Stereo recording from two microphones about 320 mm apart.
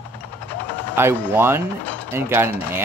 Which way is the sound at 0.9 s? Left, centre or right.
Centre.